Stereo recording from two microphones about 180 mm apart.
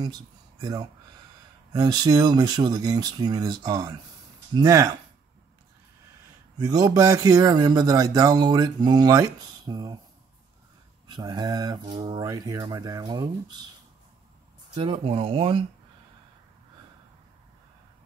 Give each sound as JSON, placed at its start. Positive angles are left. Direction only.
{"t": 0.0, "sound": "speech", "side_deg": -20}
{"t": 6.6, "sound": "speech", "side_deg": -20}
{"t": 11.1, "sound": "speech", "side_deg": -25}
{"t": 14.8, "sound": "speech", "side_deg": -30}